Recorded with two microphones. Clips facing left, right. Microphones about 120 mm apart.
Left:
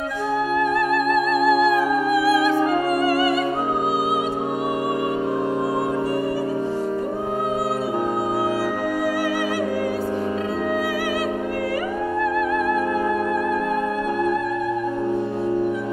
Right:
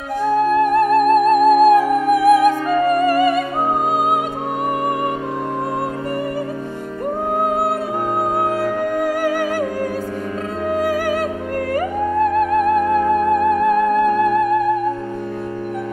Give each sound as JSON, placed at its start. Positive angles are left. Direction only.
{"t": 0.7, "sound": "music", "side_deg": -45}
{"t": 12.2, "sound": "music", "side_deg": -50}